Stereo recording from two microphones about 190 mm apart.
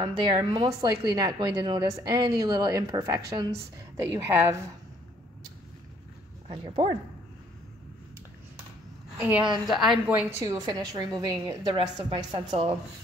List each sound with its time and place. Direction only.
0.0 s a woman's voice: 25° right (ahead or behind)
6.4 s a woman's voice: 25° right (ahead or behind)
9.2 s a woman's voice: 5° right (ahead or behind)
10.4 s a woman's voice: 20° right (ahead or behind)